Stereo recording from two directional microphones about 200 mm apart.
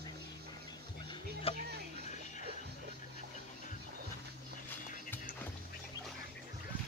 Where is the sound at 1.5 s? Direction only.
30° left (ahead or behind).